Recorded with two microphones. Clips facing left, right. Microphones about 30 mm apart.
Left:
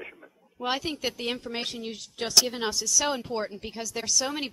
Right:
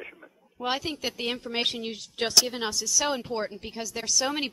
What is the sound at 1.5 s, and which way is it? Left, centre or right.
Speech, centre.